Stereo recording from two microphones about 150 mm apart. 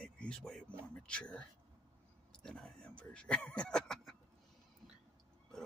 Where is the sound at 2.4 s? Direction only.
5° left (ahead or behind).